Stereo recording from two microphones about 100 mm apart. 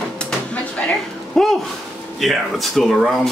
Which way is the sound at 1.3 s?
5° left (ahead or behind).